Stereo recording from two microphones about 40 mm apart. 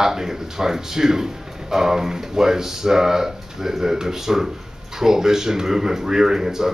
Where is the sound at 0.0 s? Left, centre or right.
Centre.